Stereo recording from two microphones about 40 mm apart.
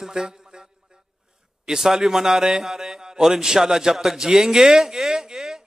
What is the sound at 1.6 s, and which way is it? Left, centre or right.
A man's voice, centre.